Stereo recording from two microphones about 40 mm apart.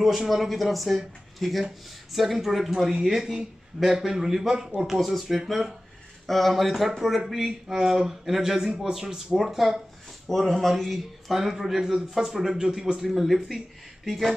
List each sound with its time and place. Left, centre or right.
0.3 s a man's voice: centre
5.5 s a man's voice: centre
10.2 s a man's voice: centre
14.0 s a man's voice: centre